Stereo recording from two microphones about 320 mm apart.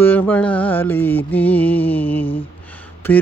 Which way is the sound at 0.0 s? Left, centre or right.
Centre.